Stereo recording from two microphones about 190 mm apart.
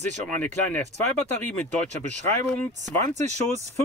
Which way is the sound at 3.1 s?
35° right (ahead or behind).